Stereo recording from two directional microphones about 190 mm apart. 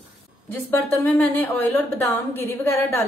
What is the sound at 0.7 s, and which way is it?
A woman's voice, 10° left (ahead or behind).